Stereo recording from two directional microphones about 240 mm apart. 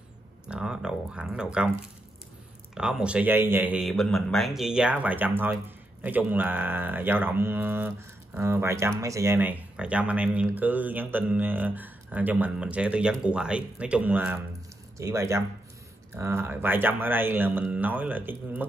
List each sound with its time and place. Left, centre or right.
0.5 s speech: centre
2.7 s speech: centre